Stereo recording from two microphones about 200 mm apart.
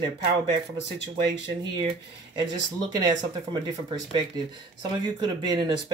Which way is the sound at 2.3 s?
20° right (ahead or behind).